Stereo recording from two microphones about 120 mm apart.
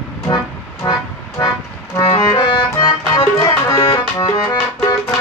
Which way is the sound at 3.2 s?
25° left (ahead or behind).